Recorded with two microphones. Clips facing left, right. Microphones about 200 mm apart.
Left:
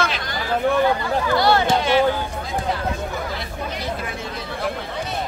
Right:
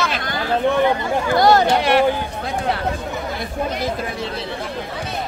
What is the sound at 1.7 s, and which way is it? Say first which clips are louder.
Speech: right 2 dB; 65° right (ahead or behind).